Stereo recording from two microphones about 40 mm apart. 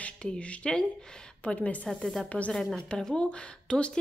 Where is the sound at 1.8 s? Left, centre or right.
Centre.